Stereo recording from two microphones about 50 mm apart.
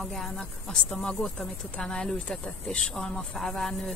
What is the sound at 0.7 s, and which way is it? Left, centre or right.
Speech, centre.